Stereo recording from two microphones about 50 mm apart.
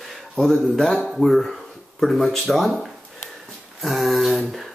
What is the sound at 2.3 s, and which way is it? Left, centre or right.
Speech, centre.